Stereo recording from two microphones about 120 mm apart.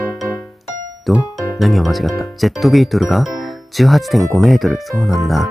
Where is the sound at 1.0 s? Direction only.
Centre (ahead or behind).